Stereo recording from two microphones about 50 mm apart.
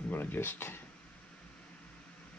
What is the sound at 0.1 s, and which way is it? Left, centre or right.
Speech, left.